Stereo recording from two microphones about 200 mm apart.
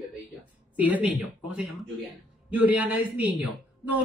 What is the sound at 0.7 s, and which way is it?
Speech, 5° right (ahead or behind).